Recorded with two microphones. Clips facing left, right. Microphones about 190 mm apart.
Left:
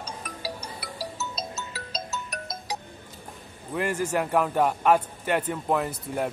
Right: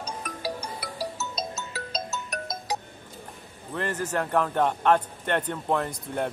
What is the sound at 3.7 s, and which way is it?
A man's voice, 10° left (ahead or behind).